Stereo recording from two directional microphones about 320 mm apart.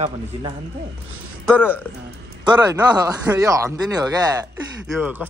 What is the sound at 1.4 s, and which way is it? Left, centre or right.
Speech, centre.